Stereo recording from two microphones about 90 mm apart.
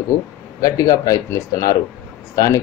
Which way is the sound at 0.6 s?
40° left (ahead or behind).